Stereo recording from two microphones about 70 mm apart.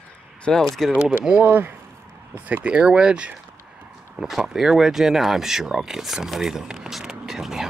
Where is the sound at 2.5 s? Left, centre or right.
Centre.